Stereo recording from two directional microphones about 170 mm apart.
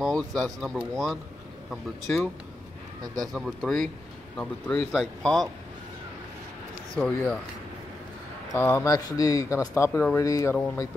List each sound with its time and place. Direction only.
0.0 s speech: 5° left (ahead or behind)
3.3 s speech: centre (ahead or behind)
7.0 s speech: 10° left (ahead or behind)
8.5 s speech: 15° left (ahead or behind)